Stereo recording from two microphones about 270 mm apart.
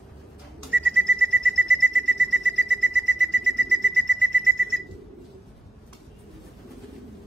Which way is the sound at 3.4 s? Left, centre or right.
Right.